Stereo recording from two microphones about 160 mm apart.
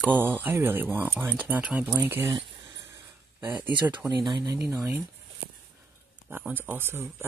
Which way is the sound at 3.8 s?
10° right (ahead or behind).